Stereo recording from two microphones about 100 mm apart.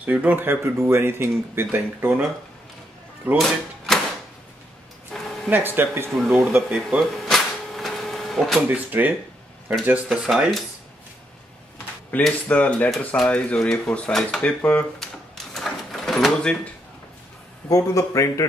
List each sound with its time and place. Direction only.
0.0 s speech: 15° right (ahead or behind)
3.3 s music: centre (ahead or behind)
5.1 s a sound: 5° left (ahead or behind)
5.5 s speech: 20° right (ahead or behind)
6.1 s speech: centre (ahead or behind)
6.5 s speech: 15° right (ahead or behind)
7.2 s a sound: centre (ahead or behind)
8.6 s speech: 15° right (ahead or behind)
10.0 s speech: 5° right (ahead or behind)
12.1 s speech: 10° left (ahead or behind)
15.0 s drawer open or close: 5° left (ahead or behind)
17.6 s speech: 35° left (ahead or behind)